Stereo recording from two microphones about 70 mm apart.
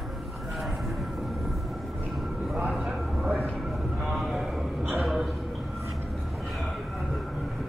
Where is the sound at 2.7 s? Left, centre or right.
Centre.